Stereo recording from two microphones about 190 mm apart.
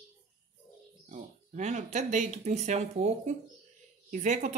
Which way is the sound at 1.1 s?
40° right (ahead or behind).